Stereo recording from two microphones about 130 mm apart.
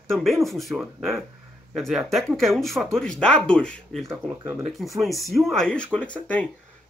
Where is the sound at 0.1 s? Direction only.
Centre (ahead or behind).